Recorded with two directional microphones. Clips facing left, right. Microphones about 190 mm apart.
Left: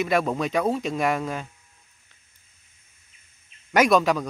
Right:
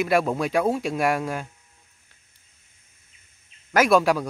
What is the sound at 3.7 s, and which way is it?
Speech, 5° right (ahead or behind).